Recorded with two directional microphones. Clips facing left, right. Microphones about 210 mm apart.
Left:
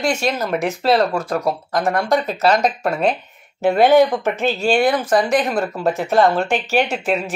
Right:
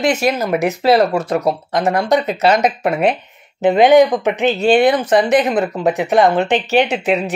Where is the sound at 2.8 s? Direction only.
20° right (ahead or behind).